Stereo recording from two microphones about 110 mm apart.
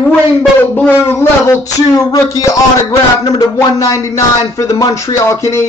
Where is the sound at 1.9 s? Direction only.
35° left (ahead or behind).